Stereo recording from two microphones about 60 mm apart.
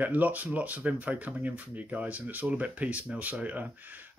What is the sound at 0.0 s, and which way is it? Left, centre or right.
Speech, right.